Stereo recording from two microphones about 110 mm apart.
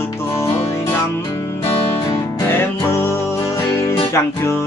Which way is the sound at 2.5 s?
20° left (ahead or behind).